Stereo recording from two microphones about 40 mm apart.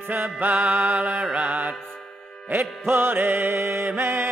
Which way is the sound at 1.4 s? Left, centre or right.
Right.